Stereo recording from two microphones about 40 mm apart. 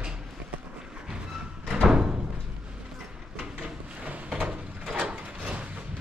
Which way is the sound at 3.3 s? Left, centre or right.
Right.